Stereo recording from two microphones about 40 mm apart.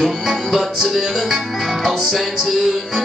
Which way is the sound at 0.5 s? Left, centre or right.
Centre.